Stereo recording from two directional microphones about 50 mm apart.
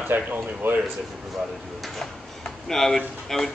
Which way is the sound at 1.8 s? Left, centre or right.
Centre.